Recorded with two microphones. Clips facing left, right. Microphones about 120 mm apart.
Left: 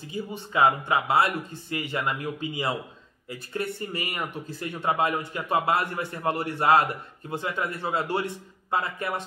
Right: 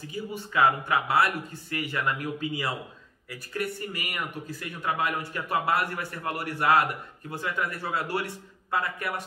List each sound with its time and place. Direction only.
0.1 s speech: 25° left (ahead or behind)